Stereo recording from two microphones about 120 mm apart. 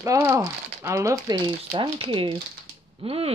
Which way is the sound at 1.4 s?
40° right (ahead or behind).